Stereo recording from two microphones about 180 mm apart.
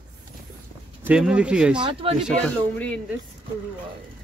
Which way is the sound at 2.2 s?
5° left (ahead or behind).